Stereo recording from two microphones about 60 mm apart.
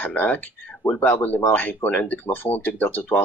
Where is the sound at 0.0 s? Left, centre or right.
Left.